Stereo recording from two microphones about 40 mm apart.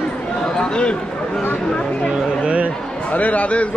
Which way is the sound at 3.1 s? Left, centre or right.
Left.